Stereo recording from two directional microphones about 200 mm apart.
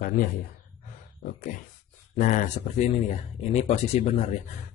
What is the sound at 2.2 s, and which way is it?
Speech, 40° left (ahead or behind).